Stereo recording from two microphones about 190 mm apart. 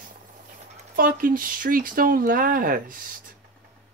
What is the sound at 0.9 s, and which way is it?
Speech, 45° right (ahead or behind).